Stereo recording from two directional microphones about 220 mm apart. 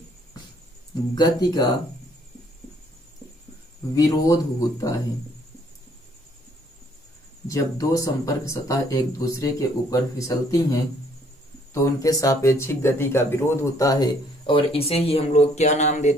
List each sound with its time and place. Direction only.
1.1 s speech: 15° left (ahead or behind)
3.9 s speech: 15° left (ahead or behind)
7.4 s speech: 15° left (ahead or behind); by 16.2 s 30° left (ahead or behind)